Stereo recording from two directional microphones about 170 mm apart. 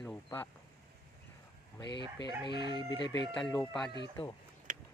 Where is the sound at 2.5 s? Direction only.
25° right (ahead or behind).